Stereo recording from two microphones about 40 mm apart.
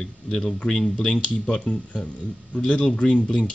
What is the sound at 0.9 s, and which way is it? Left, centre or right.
Speech, left.